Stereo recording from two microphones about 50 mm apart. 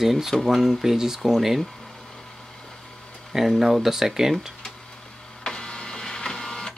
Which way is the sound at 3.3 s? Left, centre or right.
Centre.